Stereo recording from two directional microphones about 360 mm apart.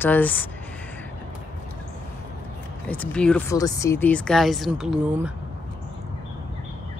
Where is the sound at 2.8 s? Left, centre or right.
Centre.